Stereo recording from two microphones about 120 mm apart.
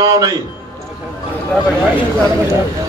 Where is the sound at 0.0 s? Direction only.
25° right (ahead or behind).